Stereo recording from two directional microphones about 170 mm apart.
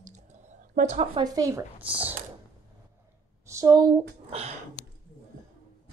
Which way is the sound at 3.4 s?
20° right (ahead or behind).